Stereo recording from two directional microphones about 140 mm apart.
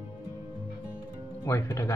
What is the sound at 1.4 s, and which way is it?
Speech, 20° left (ahead or behind).